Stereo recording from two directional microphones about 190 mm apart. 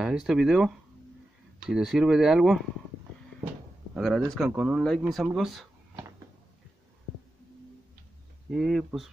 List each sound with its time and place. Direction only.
0.0 s speech: 5° right (ahead or behind)
3.9 s speech: centre (ahead or behind)
5.9 s cupboard open or close: 15° right (ahead or behind)
8.5 s speech: centre (ahead or behind)